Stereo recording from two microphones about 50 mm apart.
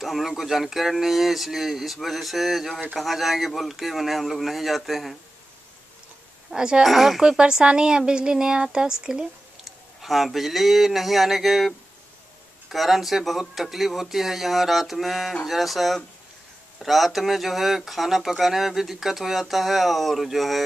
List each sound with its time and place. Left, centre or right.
0.0 s speech: centre
6.5 s a woman's voice: centre
6.8 s speech: centre
7.2 s a woman's voice: centre
9.7 s speech: centre